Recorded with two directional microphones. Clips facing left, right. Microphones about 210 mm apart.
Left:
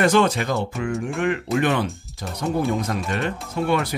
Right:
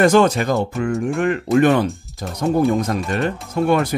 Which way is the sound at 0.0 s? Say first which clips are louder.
Right 4 dB; 45° right (ahead or behind).